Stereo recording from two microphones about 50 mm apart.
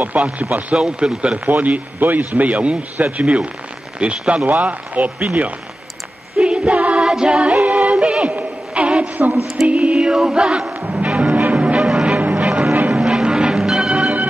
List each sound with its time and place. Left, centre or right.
0.0 s a man's voice: right
0.7 s a man's voice: centre
1.5 s a man's voice: right
4.5 s a man's voice: right
6.4 s music: right
7.6 s music: right
7.9 s synthetic singing: right
8.4 s a sound: right
9.7 s a man's voice: right
10.8 s music: right
12.2 s music: right
12.4 s music: centre